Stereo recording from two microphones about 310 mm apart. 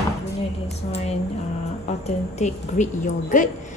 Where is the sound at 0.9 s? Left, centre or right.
Centre.